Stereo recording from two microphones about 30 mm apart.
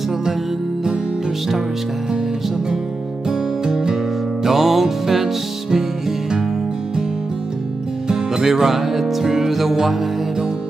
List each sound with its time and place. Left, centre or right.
3.3 s music: centre
4.5 s music: centre
8.1 s music: centre